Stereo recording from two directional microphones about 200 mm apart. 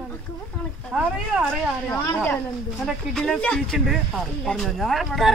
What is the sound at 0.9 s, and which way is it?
Speech, 5° right (ahead or behind).